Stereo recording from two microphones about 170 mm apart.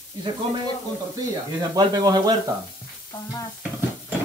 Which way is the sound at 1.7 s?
25° right (ahead or behind).